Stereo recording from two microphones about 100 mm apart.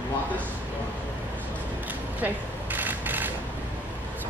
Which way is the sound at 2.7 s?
20° right (ahead or behind).